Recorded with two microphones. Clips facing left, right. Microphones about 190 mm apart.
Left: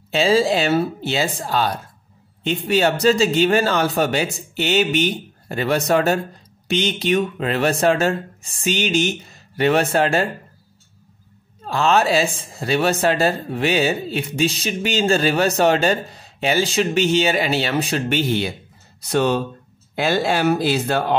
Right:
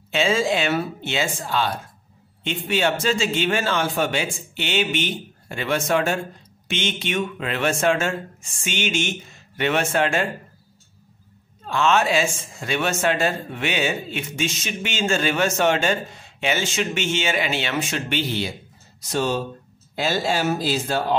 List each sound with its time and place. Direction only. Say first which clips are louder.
0.1 s speech: left 4 dB; 35° left (ahead or behind)
11.6 s speech: left 2 dB; 35° left (ahead or behind)
18.9 s speech: left 5 dB; 60° left (ahead or behind)